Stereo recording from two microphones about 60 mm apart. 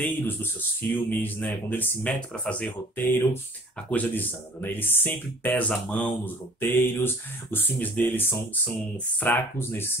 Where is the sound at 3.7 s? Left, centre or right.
Left.